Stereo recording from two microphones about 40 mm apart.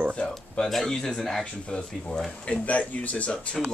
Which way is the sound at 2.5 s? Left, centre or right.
Left.